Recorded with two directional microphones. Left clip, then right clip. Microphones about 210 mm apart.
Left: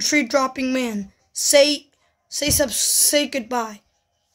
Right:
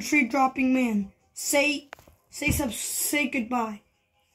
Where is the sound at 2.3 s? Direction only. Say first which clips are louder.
Left 8 dB; 70° left (ahead or behind).